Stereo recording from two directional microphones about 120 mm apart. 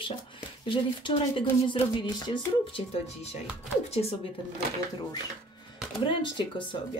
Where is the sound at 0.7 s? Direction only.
45° left (ahead or behind).